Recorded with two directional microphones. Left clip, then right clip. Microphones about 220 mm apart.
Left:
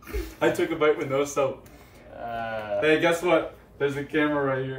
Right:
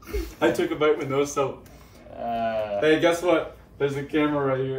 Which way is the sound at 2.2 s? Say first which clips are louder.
Right 5 dB; 25° right (ahead or behind).